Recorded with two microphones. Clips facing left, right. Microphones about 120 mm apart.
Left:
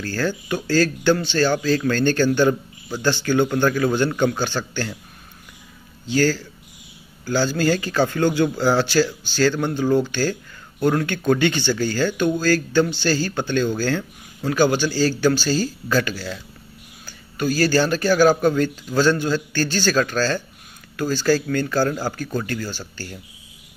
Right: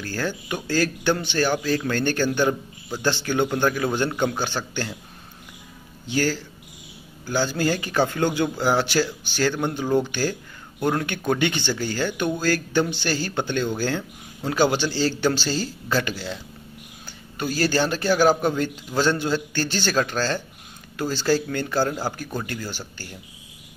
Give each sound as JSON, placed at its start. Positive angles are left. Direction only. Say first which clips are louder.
{"t": 0.0, "sound": "speech", "louder": "left 4 dB", "side_deg": -15}
{"t": 6.0, "sound": "speech", "louder": "left 4 dB", "side_deg": -20}